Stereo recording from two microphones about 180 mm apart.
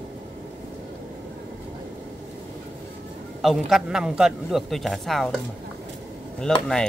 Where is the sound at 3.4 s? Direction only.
Centre (ahead or behind).